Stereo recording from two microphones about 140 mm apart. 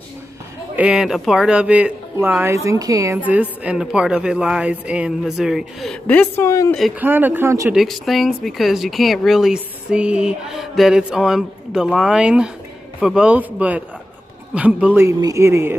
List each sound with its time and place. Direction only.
0.7 s a woman's voice: 5° right (ahead or behind); by 3.2 s 25° right (ahead or behind)
3.3 s a woman's voice: 10° right (ahead or behind)
6.0 s a woman's voice: 15° left (ahead or behind)
7.0 s a woman's voice: 15° right (ahead or behind)
7.7 s a woman's voice: centre (ahead or behind)
15.0 s speech: 25° right (ahead or behind)